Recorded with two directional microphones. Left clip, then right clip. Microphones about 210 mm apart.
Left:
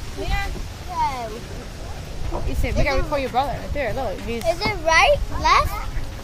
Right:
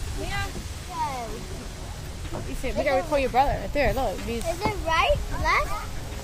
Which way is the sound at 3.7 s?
50° right (ahead or behind).